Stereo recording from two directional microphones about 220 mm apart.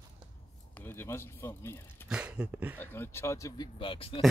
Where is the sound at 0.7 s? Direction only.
10° left (ahead or behind).